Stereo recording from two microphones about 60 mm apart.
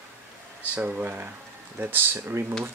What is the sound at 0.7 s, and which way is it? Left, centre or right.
Speech, right.